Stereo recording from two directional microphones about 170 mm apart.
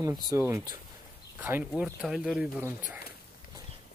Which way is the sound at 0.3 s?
15° right (ahead or behind).